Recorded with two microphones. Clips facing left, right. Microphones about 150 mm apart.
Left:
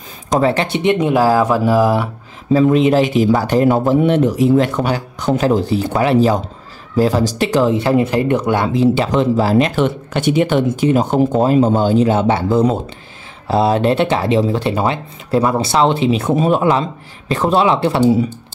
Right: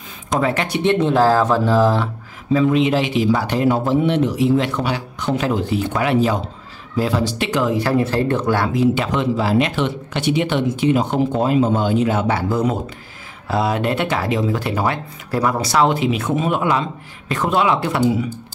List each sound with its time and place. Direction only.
0.3 s speech: 30° left (ahead or behind); by 2.0 s 10° left (ahead or behind)
2.5 s speech: 40° left (ahead or behind)